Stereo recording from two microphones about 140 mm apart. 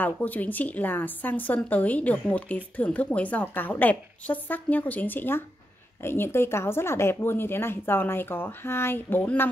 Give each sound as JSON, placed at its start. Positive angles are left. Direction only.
{"t": 0.0, "sound": "a woman's voice", "side_deg": 10}